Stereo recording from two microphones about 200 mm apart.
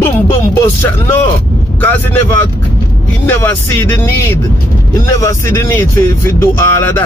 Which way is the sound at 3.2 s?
10° left (ahead or behind).